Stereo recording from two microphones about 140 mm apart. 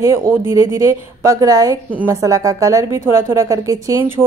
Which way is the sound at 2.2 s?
25° right (ahead or behind).